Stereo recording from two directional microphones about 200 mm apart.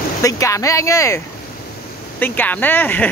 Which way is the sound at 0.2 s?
15° left (ahead or behind).